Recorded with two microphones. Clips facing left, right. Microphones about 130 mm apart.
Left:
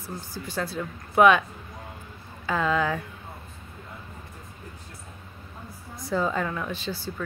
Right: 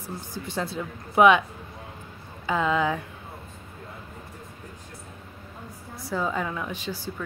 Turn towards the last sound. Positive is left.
turn(degrees=-10)  # may be behind; listen again after turning